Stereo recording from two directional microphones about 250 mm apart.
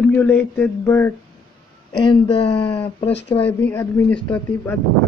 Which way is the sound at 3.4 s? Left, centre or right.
Centre.